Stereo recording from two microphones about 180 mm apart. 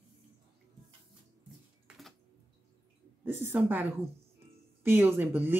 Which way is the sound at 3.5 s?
10° right (ahead or behind).